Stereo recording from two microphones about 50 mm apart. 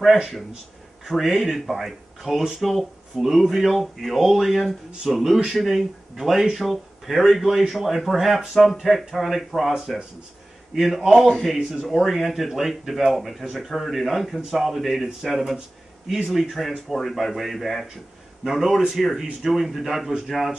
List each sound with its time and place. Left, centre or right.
1.0 s speech: centre
9.8 s speech: centre